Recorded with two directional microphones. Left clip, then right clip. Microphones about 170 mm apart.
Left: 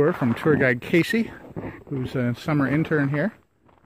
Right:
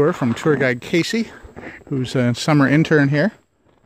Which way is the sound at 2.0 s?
50° right (ahead or behind).